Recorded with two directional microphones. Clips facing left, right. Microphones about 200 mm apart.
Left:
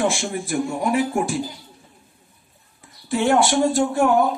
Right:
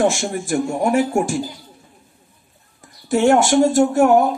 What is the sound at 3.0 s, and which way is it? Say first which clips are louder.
Speech: right 4 dB; 45° right (ahead or behind).